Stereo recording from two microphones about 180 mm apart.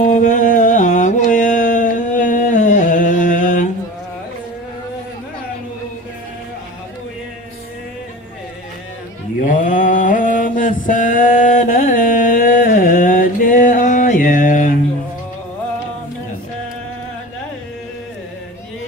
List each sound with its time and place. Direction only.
0.0 s mantra: 45° left (ahead or behind)
9.4 s mantra: 45° left (ahead or behind)